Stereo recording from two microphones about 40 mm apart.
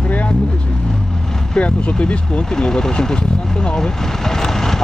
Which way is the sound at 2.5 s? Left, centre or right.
Centre.